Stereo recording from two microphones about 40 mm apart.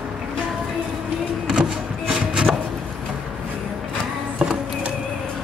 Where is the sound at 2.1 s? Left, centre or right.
Centre.